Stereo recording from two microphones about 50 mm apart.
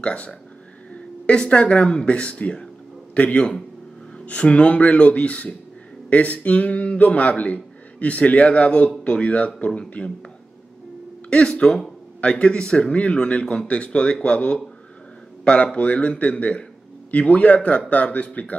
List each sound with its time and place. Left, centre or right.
0.0 s speech: left
11.2 s speech: left